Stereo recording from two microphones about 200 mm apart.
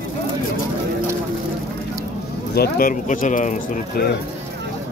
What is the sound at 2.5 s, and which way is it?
Speech, 50° left (ahead or behind).